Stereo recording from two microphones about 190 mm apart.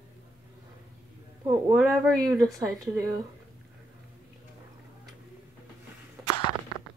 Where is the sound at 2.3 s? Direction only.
15° right (ahead or behind).